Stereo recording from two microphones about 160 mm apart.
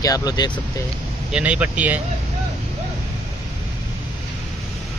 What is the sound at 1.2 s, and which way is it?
Speech, 5° right (ahead or behind).